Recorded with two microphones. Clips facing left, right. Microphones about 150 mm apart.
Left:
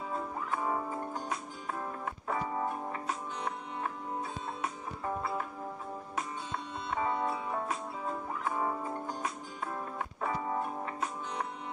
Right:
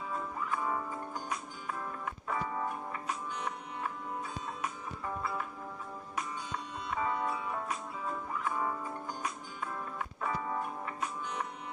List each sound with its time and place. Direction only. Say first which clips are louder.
0.1 s music: even; 25° left (ahead or behind)
2.2 s music: left 2 dB; 20° left (ahead or behind)
4.2 s music: left 2 dB; 25° left (ahead or behind)
6.9 s music: left 1 dB; 25° left (ahead or behind)